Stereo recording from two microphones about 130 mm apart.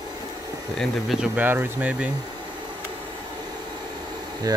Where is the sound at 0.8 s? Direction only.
5° right (ahead or behind).